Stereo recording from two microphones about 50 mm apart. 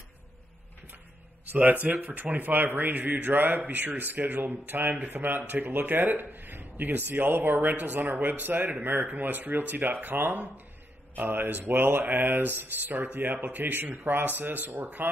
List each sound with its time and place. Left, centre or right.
1.4 s speech: right